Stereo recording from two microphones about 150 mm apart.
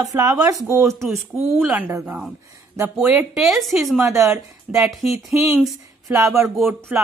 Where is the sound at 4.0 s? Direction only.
20° right (ahead or behind).